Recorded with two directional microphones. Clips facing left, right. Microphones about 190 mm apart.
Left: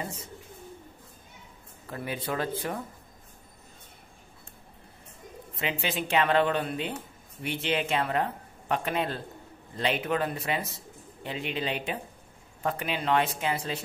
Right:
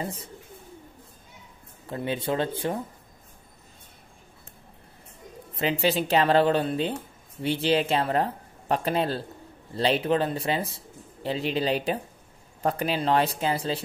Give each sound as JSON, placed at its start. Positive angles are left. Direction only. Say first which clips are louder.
{"t": 0.0, "sound": "speech", "louder": "right 4 dB", "side_deg": -35}
{"t": 1.9, "sound": "speech", "louder": "right 5 dB", "side_deg": -25}
{"t": 5.6, "sound": "speech", "louder": "right 7 dB", "side_deg": -35}